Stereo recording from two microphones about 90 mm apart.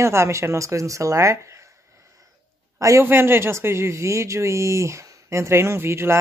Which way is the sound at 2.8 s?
35° right (ahead or behind).